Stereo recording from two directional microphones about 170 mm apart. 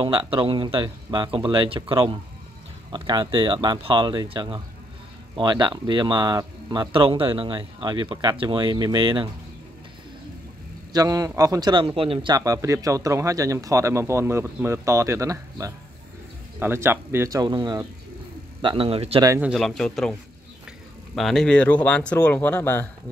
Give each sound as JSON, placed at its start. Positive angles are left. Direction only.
{"t": 0.0, "sound": "a man's voice", "side_deg": -30}
{"t": 10.9, "sound": "a man's voice", "side_deg": -20}
{"t": 19.2, "sound": "speech", "side_deg": -15}
{"t": 19.5, "sound": "speech", "side_deg": 0}